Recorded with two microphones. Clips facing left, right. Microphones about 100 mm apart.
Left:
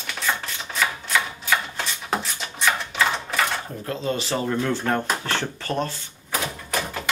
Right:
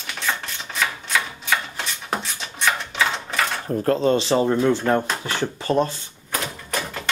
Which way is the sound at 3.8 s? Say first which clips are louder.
Right 10 dB; 45° right (ahead or behind).